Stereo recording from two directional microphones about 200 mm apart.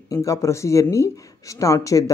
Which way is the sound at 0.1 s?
15° left (ahead or behind).